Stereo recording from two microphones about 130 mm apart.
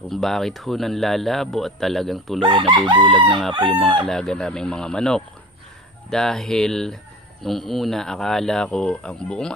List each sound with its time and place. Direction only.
0.1 s speech: centre (ahead or behind)
2.4 s chicken: 40° right (ahead or behind)
4.1 s speech: 5° left (ahead or behind)